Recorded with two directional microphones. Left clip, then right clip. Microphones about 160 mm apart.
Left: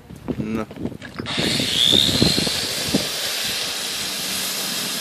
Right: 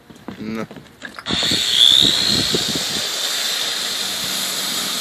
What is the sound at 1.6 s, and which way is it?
Vehicle, 60° left (ahead or behind).